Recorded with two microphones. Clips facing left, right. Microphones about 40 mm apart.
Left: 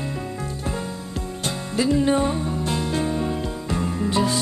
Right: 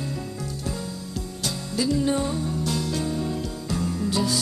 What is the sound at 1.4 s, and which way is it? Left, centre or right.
Music, left.